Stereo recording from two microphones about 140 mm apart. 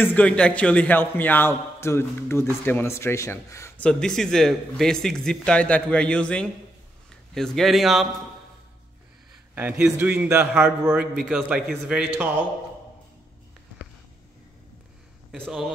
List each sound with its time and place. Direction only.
0.0 s a man's voice: 10° left (ahead or behind)
3.8 s a man's voice: 5° left (ahead or behind)
9.6 s a man's voice: 10° right (ahead or behind)
15.3 s a man's voice: centre (ahead or behind)